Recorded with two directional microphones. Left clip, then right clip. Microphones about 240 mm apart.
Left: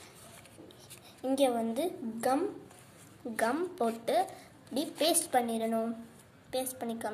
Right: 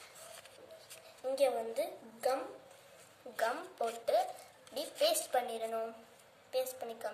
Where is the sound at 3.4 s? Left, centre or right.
Left.